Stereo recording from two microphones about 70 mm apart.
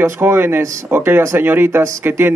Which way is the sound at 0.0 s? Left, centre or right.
Right.